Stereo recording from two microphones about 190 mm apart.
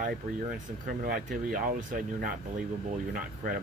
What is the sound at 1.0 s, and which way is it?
Speech, 50° right (ahead or behind).